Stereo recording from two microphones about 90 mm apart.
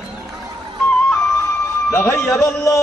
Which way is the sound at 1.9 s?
30° left (ahead or behind).